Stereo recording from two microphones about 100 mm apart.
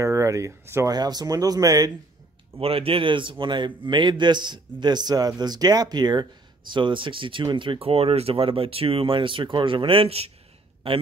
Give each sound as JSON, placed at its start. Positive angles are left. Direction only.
{"t": 0.0, "sound": "speech", "side_deg": -30}
{"t": 0.9, "sound": "speech", "side_deg": -40}
{"t": 2.6, "sound": "a man's voice", "side_deg": -70}